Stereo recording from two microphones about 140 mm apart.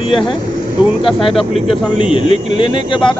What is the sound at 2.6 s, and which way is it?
Speech, 35° left (ahead or behind).